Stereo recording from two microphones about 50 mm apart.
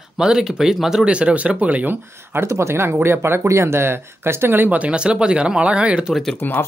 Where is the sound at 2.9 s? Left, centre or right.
Right.